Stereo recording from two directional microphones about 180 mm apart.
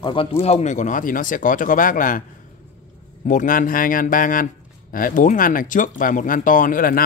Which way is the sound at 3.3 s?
50° left (ahead or behind).